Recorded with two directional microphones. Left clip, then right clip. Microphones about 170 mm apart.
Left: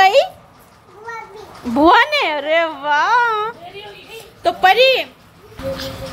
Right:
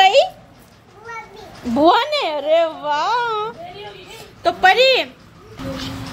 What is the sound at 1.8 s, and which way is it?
A woman's voice, 35° left (ahead or behind).